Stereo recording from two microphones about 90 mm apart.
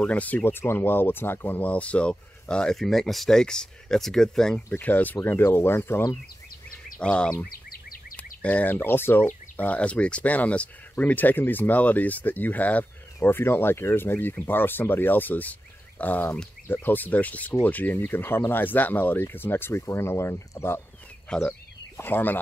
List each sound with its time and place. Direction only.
0.0 s speech: 15° left (ahead or behind)
4.6 s speech: 20° left (ahead or behind)
7.0 s speech: 10° left (ahead or behind); by 20.8 s 30° left (ahead or behind)
21.9 s speech: 20° left (ahead or behind)